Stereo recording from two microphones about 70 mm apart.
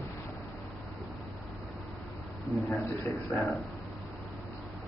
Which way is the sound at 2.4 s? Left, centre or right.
Centre.